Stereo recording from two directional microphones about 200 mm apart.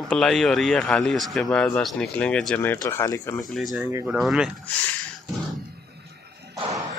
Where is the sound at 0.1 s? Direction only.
Centre (ahead or behind).